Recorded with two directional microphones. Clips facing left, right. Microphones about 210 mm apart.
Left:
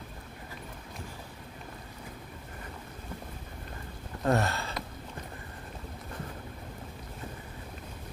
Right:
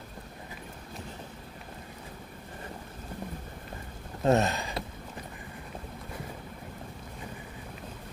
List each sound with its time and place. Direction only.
4.2 s sniff: 20° right (ahead or behind)